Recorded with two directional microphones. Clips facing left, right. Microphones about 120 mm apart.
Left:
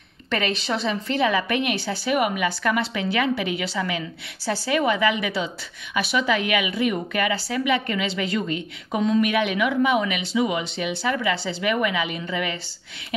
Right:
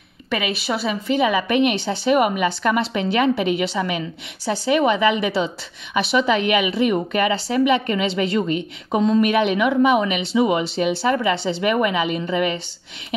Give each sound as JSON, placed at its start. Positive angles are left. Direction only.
{"t": 0.3, "sound": "a woman's voice", "side_deg": -10}